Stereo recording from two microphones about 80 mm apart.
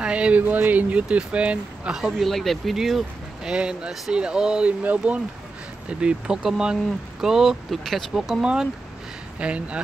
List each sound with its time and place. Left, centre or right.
0.0 s speech: centre